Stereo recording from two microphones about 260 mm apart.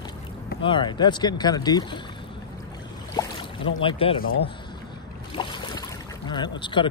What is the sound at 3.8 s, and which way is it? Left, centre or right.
Speech, left.